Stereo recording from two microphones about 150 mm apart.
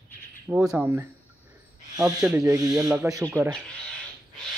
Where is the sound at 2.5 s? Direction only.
20° right (ahead or behind).